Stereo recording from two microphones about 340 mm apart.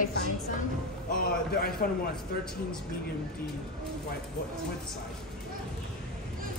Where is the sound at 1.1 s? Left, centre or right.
Left.